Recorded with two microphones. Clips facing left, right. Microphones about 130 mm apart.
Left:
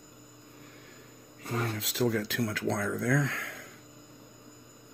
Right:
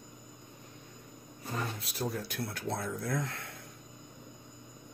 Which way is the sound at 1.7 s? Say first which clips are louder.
Left 7 dB; 90° left.